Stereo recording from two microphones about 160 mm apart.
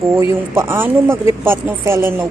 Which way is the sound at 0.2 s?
15° right (ahead or behind).